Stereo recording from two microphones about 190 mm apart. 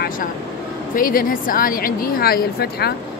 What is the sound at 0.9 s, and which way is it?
A woman's voice, 45° left (ahead or behind).